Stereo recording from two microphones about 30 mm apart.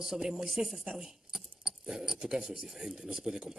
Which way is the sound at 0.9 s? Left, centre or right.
Centre.